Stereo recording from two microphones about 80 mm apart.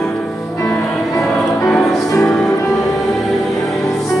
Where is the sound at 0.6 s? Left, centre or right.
Left.